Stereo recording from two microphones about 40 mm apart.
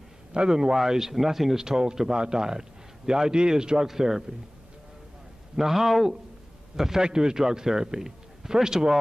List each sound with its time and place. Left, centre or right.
0.3 s a man's voice: centre
5.6 s a man's voice: centre
6.8 s a man's voice: centre